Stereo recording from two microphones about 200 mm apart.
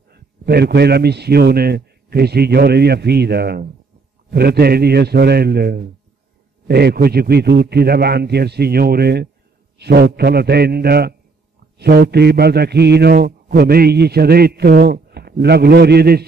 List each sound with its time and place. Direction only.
0.1 s a man's voice: 50° right (ahead or behind)